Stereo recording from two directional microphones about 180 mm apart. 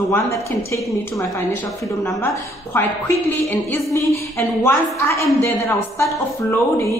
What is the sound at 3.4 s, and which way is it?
A woman's voice, 10° left (ahead or behind).